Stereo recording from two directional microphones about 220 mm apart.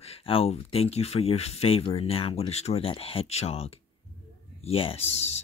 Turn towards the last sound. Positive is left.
turn(degrees=30)  # may be behind; listen again after turning